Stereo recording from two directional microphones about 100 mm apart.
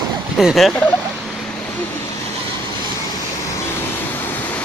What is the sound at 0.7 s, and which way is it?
Speech, 20° left (ahead or behind).